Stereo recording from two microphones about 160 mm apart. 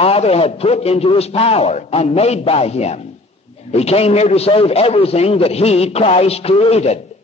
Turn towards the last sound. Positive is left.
turn(degrees=40)  # may be behind; listen again after turning